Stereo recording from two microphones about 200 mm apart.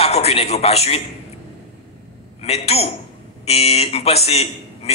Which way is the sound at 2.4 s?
30° left (ahead or behind).